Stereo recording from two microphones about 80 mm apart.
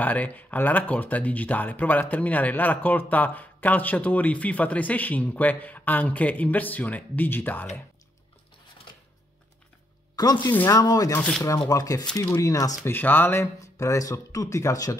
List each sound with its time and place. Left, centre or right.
0.0 s speech: left
10.1 s speech: left
12.8 s speech: left
13.7 s speech: left